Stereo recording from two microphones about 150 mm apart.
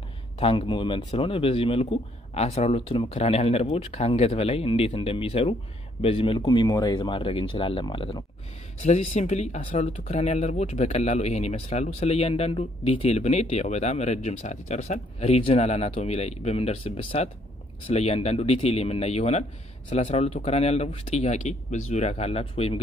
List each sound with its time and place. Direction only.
0.4 s speech: 35° left (ahead or behind)
8.8 s speech: 45° left (ahead or behind)